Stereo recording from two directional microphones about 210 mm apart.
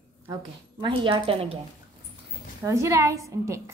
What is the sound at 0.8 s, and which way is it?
Speech, 25° right (ahead or behind).